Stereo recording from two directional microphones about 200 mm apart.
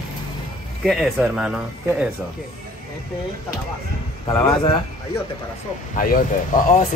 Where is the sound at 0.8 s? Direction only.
Centre (ahead or behind).